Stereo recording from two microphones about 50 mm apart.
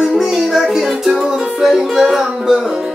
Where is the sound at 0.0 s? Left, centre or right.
Centre.